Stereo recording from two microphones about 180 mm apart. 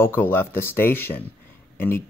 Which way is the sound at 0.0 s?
10° left (ahead or behind).